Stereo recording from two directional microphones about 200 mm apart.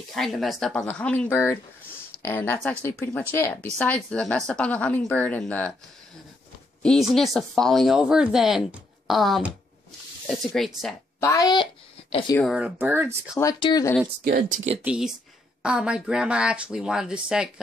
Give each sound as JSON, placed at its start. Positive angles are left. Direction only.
{"t": 0.1, "sound": "speech", "side_deg": 0}
{"t": 6.8, "sound": "speech", "side_deg": 0}
{"t": 11.1, "sound": "a sound", "side_deg": 15}
{"t": 12.4, "sound": "speech", "side_deg": 0}
{"t": 13.4, "sound": "speech", "side_deg": 20}
{"t": 14.2, "sound": "speech", "side_deg": -50}
{"t": 14.8, "sound": "speech", "side_deg": -5}